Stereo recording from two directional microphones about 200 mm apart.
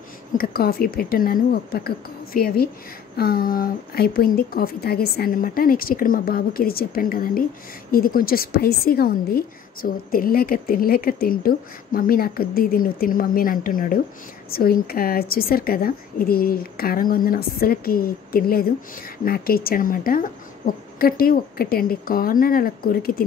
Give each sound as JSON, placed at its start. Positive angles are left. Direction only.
{"t": 0.4, "sound": "a woman's voice", "side_deg": 50}